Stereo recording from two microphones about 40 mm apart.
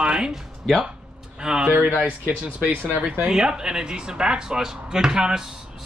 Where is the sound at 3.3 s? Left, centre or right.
Centre.